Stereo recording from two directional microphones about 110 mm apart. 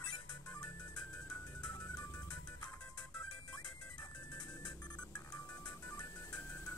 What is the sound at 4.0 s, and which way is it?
Music, 40° left (ahead or behind).